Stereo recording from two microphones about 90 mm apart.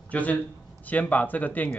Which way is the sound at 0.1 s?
15° left (ahead or behind).